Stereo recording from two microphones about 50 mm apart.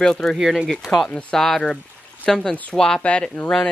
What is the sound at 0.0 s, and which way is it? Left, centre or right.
Speech, centre.